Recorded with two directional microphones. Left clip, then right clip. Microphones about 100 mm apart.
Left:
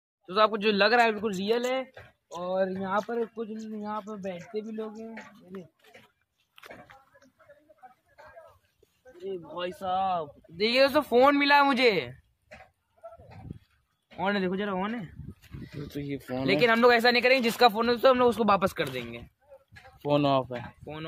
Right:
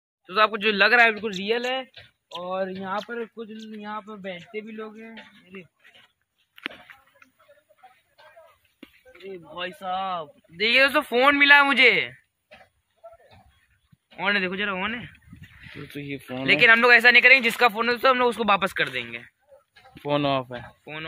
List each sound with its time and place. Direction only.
0.3 s a man's voice: 10° left (ahead or behind)
1.0 s speech: 10° right (ahead or behind)
2.5 s speech: 5° right (ahead or behind)
9.9 s speech: 20° right (ahead or behind)
10.6 s a man's voice: 35° left (ahead or behind)
14.1 s speech: 55° left (ahead or behind)
15.9 s speech: 5° right (ahead or behind)
16.4 s speech: 55° left (ahead or behind)
17.5 s speech: 25° left (ahead or behind)
18.8 s speech: 45° left (ahead or behind)
20.1 s speech: centre (ahead or behind)